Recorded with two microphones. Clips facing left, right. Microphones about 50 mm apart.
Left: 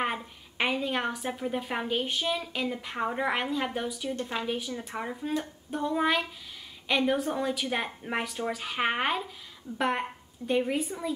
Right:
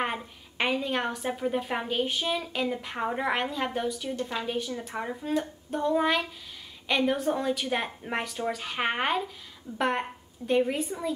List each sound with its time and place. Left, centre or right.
0.0 s a woman's voice: centre